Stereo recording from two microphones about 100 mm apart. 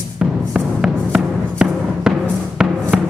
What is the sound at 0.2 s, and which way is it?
Music, 10° right (ahead or behind).